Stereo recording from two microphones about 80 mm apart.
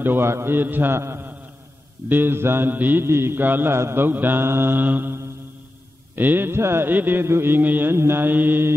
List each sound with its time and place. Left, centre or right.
0.0 s mantra: right